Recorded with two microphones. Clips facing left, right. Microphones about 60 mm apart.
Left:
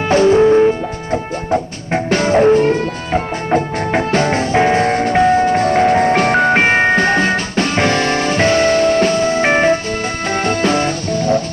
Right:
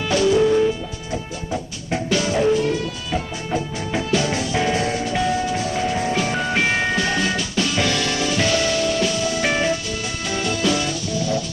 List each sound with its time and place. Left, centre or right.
0.1 s music: left